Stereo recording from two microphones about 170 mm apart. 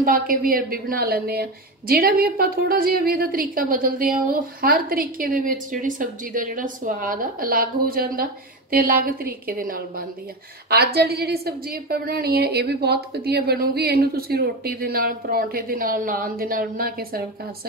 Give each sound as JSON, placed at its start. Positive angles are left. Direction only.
{"t": 0.0, "sound": "a woman's voice", "side_deg": -55}
{"t": 10.7, "sound": "a woman's voice", "side_deg": -70}